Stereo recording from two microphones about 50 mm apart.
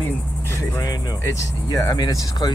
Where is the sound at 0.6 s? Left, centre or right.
Left.